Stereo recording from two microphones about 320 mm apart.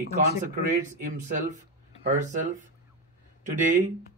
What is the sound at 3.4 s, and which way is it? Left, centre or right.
Speech, right.